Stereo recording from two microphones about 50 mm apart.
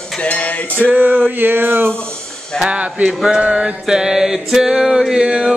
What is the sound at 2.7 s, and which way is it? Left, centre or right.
Mantra, right.